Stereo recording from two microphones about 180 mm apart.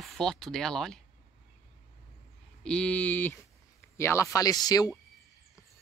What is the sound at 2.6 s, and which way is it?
Speech, 5° left (ahead or behind).